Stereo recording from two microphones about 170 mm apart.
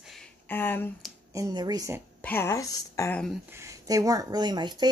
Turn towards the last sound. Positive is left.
turn(degrees=-25)  # may be behind; listen again after turning